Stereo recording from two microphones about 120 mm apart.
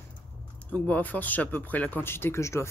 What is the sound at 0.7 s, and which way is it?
Speech, 15° left (ahead or behind).